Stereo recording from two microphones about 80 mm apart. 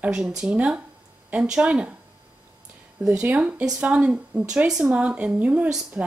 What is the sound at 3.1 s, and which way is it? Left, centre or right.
A woman's voice, centre.